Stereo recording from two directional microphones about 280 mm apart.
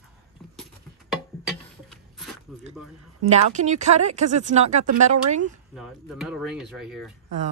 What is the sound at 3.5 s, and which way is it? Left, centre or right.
Speech, right.